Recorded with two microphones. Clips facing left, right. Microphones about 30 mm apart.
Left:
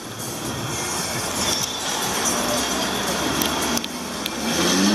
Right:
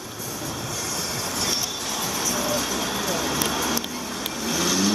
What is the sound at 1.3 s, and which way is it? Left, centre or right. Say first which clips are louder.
Train: left 2 dB; centre.